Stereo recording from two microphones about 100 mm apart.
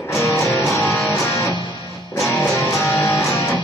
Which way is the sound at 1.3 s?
30° left (ahead or behind).